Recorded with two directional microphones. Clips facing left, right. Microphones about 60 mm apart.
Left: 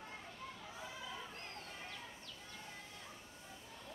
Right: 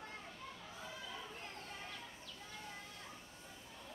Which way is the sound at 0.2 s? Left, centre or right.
Centre.